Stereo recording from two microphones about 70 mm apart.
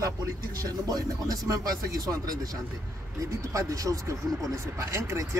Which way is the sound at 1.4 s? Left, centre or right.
Right.